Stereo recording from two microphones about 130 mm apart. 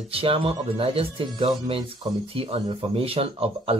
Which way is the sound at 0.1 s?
45° right (ahead or behind).